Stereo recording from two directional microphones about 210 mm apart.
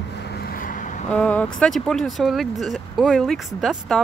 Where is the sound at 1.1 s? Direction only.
5° left (ahead or behind).